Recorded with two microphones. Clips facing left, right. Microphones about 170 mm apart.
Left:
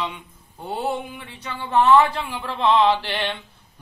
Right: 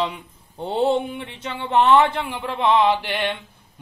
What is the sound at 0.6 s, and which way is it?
A man's voice, 25° right (ahead or behind).